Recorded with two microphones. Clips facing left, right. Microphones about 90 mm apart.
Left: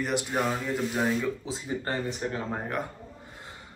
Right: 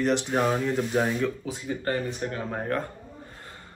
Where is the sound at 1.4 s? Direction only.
20° left (ahead or behind).